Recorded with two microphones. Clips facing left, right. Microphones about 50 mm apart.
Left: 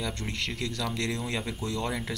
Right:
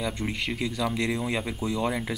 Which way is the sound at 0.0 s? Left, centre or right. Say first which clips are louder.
Right 3 dB; centre.